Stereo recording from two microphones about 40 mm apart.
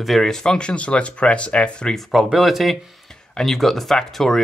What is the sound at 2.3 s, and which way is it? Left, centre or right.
Speech, centre.